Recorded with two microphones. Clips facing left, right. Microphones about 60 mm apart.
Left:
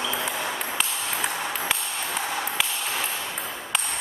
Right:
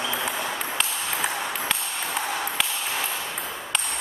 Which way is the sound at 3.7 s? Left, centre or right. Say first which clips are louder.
Left 1 dB; centre.